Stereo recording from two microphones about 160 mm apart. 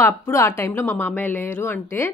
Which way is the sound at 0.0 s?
15° left (ahead or behind).